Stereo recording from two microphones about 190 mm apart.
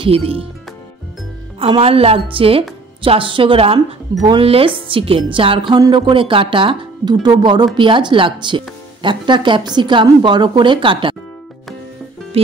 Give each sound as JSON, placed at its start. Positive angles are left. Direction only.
{"t": 0.0, "sound": "speech", "side_deg": -30}
{"t": 1.6, "sound": "speech", "side_deg": -30}